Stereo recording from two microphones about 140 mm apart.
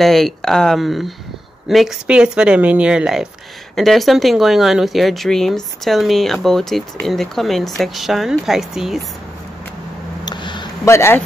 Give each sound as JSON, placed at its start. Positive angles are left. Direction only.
{"t": 0.0, "sound": "speech", "side_deg": 0}
{"t": 10.2, "sound": "a sound", "side_deg": 35}
{"t": 10.9, "sound": "speech", "side_deg": 20}